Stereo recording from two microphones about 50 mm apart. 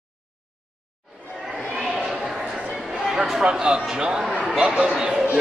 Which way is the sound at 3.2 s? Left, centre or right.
Centre.